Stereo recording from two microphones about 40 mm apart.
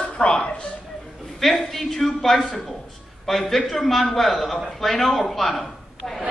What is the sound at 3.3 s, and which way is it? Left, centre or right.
A man's voice, centre.